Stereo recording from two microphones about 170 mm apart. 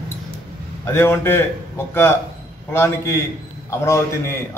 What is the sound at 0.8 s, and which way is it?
Speech, 15° left (ahead or behind).